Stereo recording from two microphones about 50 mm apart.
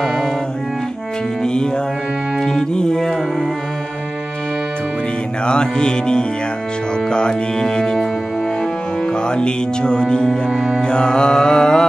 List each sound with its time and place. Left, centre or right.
1.4 s music: centre
2.7 s music: centre
5.4 s music: centre
9.3 s music: centre
10.5 s music: centre
10.8 s music: centre